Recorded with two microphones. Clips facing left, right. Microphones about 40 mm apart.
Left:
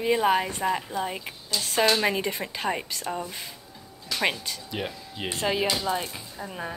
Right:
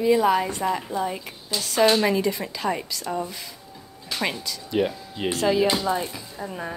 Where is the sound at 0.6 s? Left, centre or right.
Centre; by 3.1 s left.